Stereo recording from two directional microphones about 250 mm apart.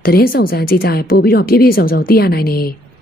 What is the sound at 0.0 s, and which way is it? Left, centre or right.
A woman's voice, left.